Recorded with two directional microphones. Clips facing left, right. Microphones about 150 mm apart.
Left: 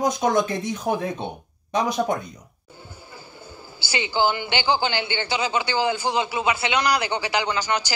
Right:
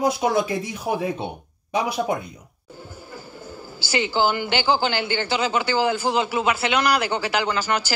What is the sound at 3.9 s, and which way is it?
Speech, 15° left (ahead or behind).